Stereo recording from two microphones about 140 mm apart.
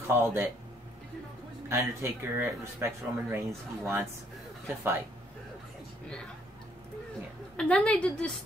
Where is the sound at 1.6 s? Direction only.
15° right (ahead or behind).